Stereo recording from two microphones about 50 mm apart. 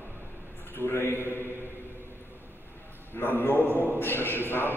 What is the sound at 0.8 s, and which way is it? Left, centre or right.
Speech, left.